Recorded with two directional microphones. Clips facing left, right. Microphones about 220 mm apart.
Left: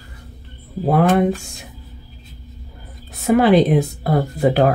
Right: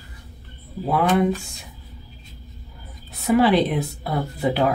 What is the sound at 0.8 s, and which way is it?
Speech, 50° left (ahead or behind).